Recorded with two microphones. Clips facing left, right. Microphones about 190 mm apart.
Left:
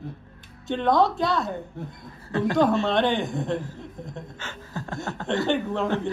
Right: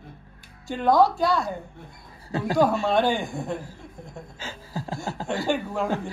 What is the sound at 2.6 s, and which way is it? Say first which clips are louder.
Speech: right 1 dB; 5° right (ahead or behind).